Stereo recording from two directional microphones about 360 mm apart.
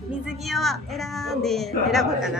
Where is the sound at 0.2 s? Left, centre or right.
Centre.